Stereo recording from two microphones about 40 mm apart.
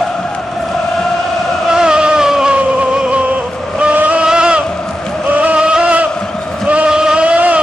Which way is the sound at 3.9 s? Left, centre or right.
Right.